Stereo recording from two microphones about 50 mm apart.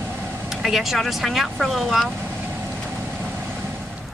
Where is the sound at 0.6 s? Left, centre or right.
Centre.